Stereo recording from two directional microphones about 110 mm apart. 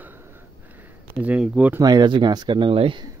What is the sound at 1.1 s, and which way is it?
Speech, 10° right (ahead or behind).